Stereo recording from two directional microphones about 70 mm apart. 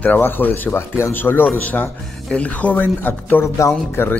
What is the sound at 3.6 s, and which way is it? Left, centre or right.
Speech, left.